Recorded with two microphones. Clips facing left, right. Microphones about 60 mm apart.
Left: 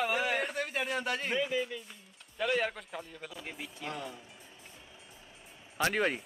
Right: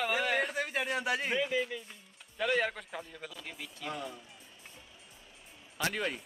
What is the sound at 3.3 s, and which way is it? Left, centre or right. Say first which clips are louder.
Speech: left 2 dB; centre.